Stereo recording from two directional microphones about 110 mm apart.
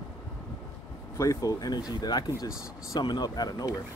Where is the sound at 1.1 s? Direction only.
30° left (ahead or behind).